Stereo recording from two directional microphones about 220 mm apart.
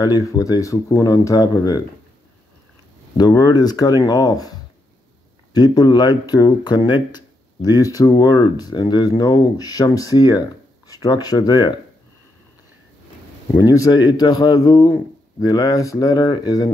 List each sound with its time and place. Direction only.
0.0 s speech: 15° left (ahead or behind)
3.2 s speech: 20° left (ahead or behind)
13.6 s speech: 15° left (ahead or behind)